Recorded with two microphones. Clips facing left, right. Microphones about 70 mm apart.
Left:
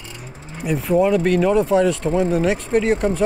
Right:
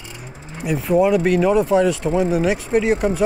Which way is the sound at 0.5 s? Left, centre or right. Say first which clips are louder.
Right 1 dB; centre.